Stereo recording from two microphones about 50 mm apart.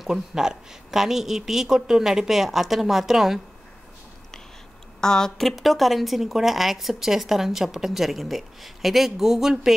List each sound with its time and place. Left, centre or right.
0.0 s a woman's voice: centre
5.0 s speech: centre
5.6 s speech: centre